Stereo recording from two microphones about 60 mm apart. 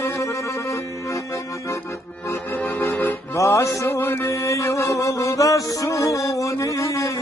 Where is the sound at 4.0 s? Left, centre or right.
Left.